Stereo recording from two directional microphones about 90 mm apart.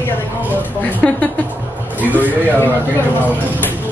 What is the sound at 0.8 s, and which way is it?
Speech, 20° left (ahead or behind).